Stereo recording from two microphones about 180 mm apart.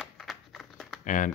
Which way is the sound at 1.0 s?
45° left (ahead or behind).